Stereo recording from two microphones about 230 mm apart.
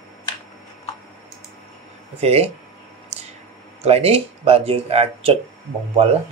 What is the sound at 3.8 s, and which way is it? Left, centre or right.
Speech, right.